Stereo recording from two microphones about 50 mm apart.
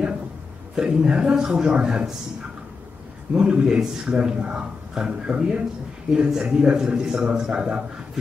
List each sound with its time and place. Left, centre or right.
0.7 s a man's voice: centre
3.3 s a man's voice: centre